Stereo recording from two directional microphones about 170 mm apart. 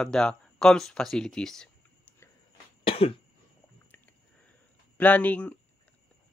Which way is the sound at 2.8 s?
35° left (ahead or behind).